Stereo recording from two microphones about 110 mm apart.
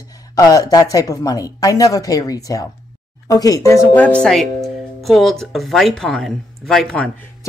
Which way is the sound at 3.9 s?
15° left (ahead or behind).